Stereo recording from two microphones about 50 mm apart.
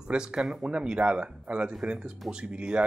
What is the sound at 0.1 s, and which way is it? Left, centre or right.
Speech, centre.